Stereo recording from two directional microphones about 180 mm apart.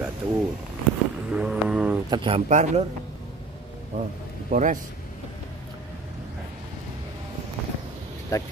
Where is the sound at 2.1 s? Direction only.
25° right (ahead or behind).